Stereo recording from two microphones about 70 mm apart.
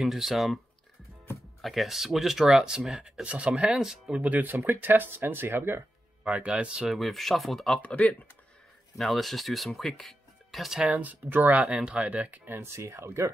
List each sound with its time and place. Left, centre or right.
0.0 s speech: centre
1.6 s speech: centre
3.5 s speech: centre
4.2 s speech: right
6.2 s speech: centre
6.9 s speech: centre
7.8 s speech: left
8.9 s speech: centre
10.9 s speech: right
11.6 s speech: centre
12.1 s speech: right
12.5 s speech: right